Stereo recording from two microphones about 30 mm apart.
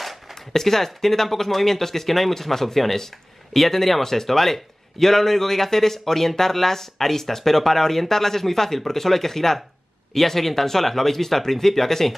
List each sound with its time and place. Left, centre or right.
0.3 s speech: centre